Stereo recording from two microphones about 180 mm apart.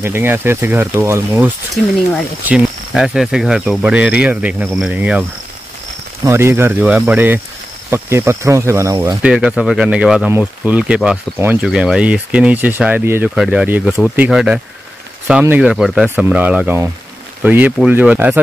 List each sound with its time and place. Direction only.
0.0 s speech: 10° right (ahead or behind)
6.2 s speech: 15° right (ahead or behind)
9.2 s speech: 5° right (ahead or behind)